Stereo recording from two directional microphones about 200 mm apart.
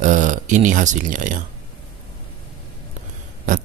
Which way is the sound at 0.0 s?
40° right (ahead or behind).